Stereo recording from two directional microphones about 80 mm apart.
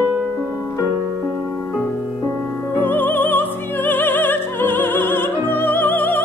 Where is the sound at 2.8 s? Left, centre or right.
Left.